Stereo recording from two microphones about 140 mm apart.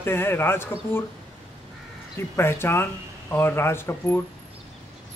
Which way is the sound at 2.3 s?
15° left (ahead or behind).